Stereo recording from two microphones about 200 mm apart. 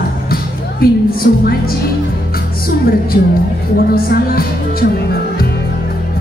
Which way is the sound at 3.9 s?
45° left (ahead or behind).